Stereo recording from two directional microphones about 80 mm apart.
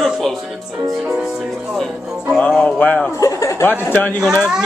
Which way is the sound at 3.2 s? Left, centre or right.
Left.